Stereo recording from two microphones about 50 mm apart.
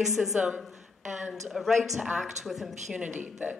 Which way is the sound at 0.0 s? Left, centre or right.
Centre.